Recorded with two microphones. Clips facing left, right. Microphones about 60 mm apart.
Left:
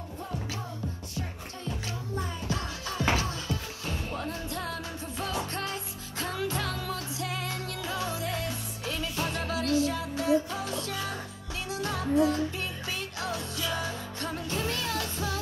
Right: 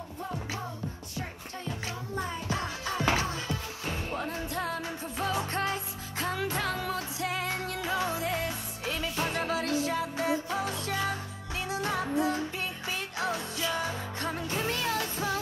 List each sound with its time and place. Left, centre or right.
2.1 s music: right